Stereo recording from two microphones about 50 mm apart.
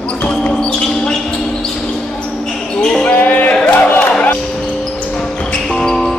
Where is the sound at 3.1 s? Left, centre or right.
Left.